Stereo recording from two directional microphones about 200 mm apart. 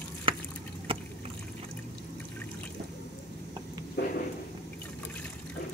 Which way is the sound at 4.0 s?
60° left (ahead or behind).